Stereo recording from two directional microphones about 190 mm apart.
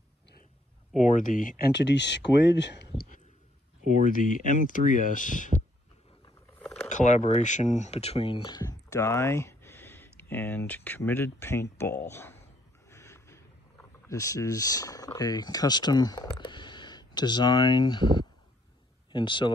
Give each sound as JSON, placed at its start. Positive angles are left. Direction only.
{"t": 0.9, "sound": "speech", "side_deg": 40}
{"t": 1.7, "sound": "speech", "side_deg": 65}
{"t": 3.8, "sound": "speech", "side_deg": 40}
{"t": 6.6, "sound": "a sound", "side_deg": 5}
{"t": 6.9, "sound": "speech", "side_deg": 40}
{"t": 12.9, "sound": "a sound", "side_deg": 15}
{"t": 14.0, "sound": "speech", "side_deg": 15}